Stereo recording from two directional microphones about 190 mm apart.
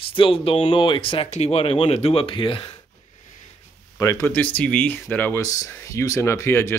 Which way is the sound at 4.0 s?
15° left (ahead or behind).